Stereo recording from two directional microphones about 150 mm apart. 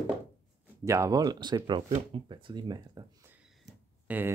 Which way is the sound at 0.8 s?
20° right (ahead or behind).